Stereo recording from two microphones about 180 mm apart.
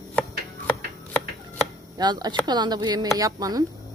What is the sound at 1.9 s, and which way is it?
Cricket, 20° right (ahead or behind).